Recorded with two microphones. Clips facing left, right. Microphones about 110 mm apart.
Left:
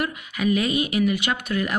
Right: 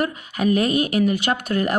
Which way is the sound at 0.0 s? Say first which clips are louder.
Right 3 dB; 40° right (ahead or behind).